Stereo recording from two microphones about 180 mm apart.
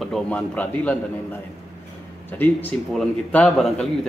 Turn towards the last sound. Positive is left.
turn(degrees=0)  # may be behind; listen again after turning